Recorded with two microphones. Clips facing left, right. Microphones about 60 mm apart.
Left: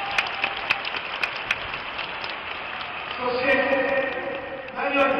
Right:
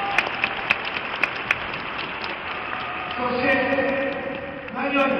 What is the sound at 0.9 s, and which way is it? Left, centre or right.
Applause, centre.